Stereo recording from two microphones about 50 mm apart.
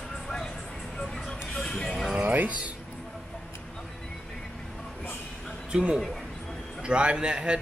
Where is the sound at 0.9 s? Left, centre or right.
Centre.